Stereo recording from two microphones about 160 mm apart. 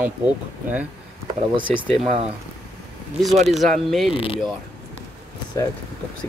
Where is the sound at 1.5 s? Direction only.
30° right (ahead or behind).